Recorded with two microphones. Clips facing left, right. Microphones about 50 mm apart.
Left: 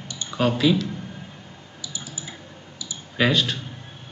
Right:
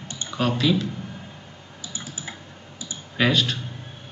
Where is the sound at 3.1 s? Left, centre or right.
Centre.